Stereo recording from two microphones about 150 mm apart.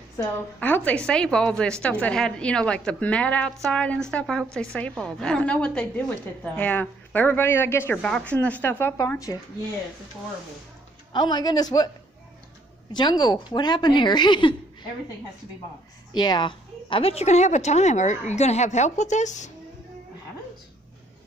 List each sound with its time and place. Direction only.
0.6 s a woman's voice: 10° left (ahead or behind)
11.1 s a woman's voice: 30° left (ahead or behind)
12.9 s a woman's voice: 30° left (ahead or behind)
16.1 s a woman's voice: 30° left (ahead or behind); by 19.5 s 55° left (ahead or behind)